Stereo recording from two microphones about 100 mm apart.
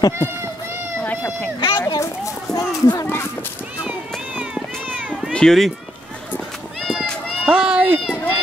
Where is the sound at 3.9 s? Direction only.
10° right (ahead or behind).